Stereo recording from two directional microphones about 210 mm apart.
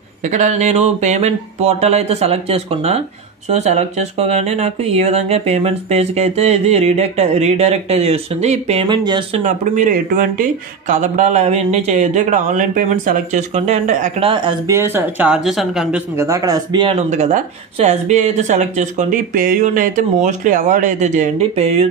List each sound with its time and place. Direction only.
0.2 s speech: 35° right (ahead or behind)
9.4 s speech: 35° right (ahead or behind)
14.3 s speech: 20° right (ahead or behind); by 16.0 s centre (ahead or behind)
16.2 s speech: 15° right (ahead or behind)
17.1 s speech: 30° right (ahead or behind)